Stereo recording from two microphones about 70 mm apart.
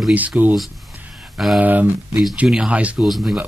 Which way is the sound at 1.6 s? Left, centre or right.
Right.